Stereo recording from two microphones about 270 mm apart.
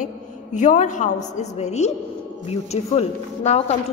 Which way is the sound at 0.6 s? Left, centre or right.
Left.